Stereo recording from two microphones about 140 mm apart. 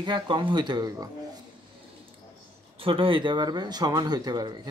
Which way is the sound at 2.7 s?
40° right (ahead or behind).